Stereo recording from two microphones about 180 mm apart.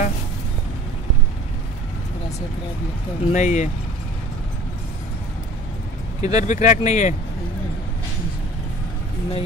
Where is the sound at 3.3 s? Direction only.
40° left (ahead or behind).